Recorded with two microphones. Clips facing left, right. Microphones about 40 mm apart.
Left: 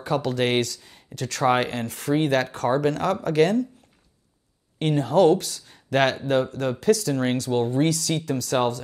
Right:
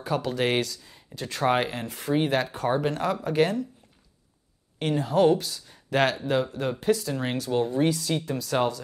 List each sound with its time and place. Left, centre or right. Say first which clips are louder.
0.0 s speech: left 3 dB; left
4.7 s speech: left 4 dB; left